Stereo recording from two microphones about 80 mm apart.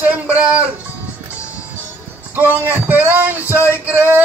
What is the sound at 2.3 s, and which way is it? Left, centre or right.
Male singing, right.